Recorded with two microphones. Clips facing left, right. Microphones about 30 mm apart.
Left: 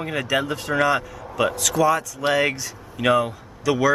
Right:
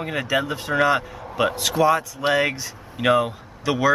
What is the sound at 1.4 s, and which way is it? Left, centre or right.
Speech, right.